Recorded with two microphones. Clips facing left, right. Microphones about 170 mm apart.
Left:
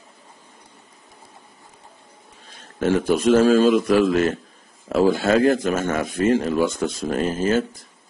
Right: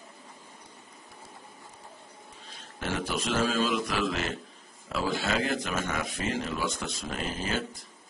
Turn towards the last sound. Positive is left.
turn(degrees=45)  # may be behind; listen again after turning